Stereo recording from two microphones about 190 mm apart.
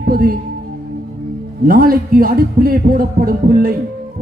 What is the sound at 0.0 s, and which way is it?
Music, 50° right (ahead or behind).